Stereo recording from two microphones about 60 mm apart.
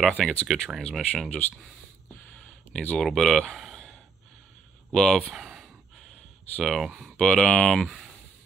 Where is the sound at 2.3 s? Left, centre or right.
Centre.